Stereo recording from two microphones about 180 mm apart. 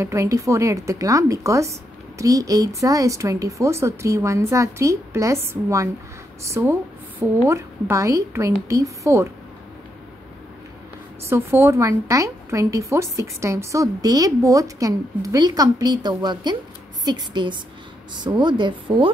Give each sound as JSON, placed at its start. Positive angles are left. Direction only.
{"t": 0.0, "sound": "a woman's voice", "side_deg": -15}
{"t": 11.2, "sound": "a woman's voice", "side_deg": -15}